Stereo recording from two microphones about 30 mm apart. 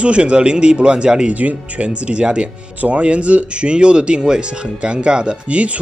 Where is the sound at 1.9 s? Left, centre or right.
Right.